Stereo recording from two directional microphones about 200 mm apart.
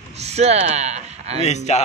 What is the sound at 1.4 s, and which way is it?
Speech, 35° left (ahead or behind).